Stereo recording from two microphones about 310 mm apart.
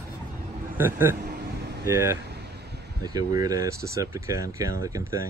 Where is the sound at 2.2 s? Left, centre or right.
Right.